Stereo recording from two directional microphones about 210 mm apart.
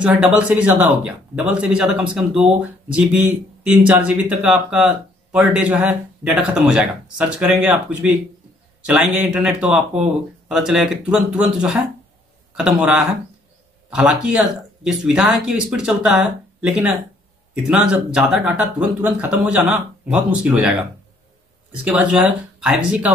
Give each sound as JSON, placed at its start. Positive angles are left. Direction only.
{"t": 0.0, "sound": "a man's voice", "side_deg": -5}
{"t": 8.8, "sound": "a man's voice", "side_deg": 0}
{"t": 21.8, "sound": "a man's voice", "side_deg": -5}